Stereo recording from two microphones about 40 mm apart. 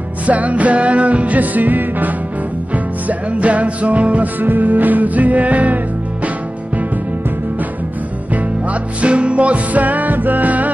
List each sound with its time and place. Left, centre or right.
0.3 s music: right
2.7 s music: right
4.4 s music: right
8.6 s music: right